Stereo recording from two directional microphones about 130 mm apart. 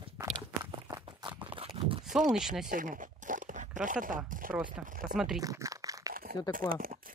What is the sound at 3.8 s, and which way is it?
Speech, 85° right.